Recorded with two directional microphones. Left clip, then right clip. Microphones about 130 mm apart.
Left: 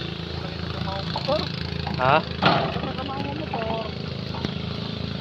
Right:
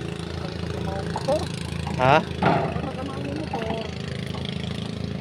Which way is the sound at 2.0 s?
70° right (ahead or behind).